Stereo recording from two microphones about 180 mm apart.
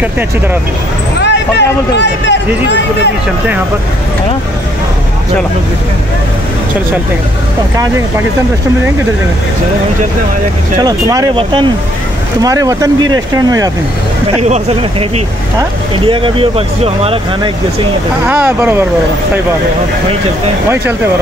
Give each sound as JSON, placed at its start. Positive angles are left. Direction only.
{"t": 1.2, "sound": "speech", "side_deg": 75}
{"t": 10.8, "sound": "speech", "side_deg": -20}
{"t": 14.5, "sound": "speech", "side_deg": -30}
{"t": 16.1, "sound": "speech", "side_deg": -30}
{"t": 18.2, "sound": "speech", "side_deg": -10}